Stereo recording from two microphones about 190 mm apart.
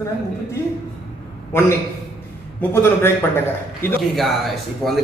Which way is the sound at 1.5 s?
10° left (ahead or behind).